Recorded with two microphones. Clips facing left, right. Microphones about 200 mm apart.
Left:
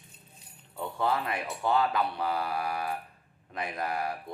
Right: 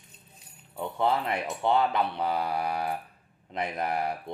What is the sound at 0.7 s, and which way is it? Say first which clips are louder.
Speech: right 3 dB; 25° right (ahead or behind).